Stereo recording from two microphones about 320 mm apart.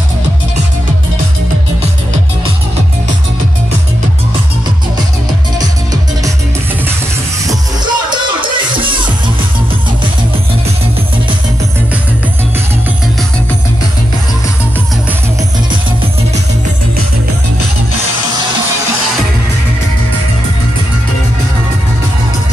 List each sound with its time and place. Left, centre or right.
7.4 s music: centre